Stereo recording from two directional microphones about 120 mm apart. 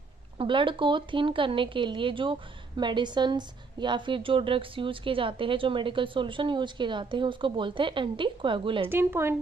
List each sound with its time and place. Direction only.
0.4 s a woman's voice: 45° right (ahead or behind)
8.8 s speech: 20° right (ahead or behind)